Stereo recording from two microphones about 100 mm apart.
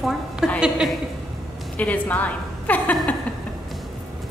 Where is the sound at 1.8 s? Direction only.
15° left (ahead or behind).